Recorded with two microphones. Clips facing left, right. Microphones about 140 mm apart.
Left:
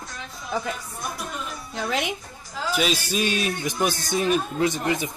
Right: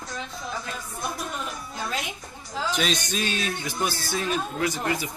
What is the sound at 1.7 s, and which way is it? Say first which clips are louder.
Speech: left 6 dB; 70° left (ahead or behind).